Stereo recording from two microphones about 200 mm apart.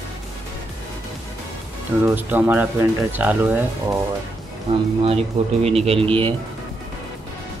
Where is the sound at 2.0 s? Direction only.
10° right (ahead or behind).